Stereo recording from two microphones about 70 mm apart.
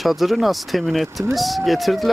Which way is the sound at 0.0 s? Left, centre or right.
Centre.